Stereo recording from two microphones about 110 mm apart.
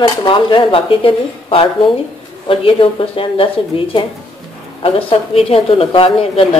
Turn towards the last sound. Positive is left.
turn(degrees=55)  # may be behind; listen again after turning